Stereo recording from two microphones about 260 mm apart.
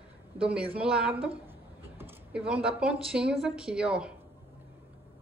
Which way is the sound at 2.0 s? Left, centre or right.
Centre.